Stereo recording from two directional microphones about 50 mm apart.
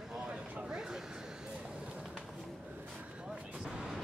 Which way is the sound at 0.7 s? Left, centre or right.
Centre.